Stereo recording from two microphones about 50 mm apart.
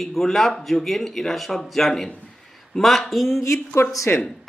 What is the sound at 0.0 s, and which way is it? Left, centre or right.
A man's voice, centre.